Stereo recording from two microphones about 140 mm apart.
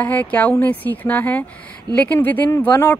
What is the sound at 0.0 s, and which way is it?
Speech, 10° left (ahead or behind).